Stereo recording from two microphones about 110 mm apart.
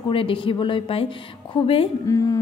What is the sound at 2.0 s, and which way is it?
Speech, 30° left (ahead or behind).